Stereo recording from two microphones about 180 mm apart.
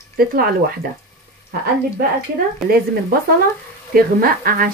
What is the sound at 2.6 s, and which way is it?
Speech, centre (ahead or behind).